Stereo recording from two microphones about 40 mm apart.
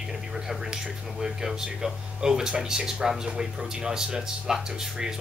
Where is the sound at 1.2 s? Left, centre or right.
Centre.